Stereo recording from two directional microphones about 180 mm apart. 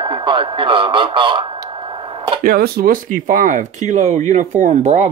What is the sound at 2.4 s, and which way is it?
Speech, 55° right (ahead or behind).